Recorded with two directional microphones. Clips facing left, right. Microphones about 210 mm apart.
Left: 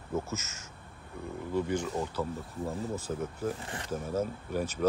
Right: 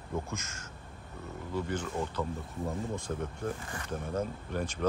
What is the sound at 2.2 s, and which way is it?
Speech, 20° left (ahead or behind).